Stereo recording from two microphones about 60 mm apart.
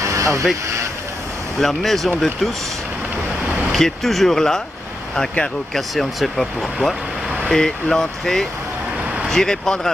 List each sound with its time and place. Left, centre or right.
0.0 s vehicle: right
1.6 s speech: centre
3.7 s speech: centre
5.8 s speech: centre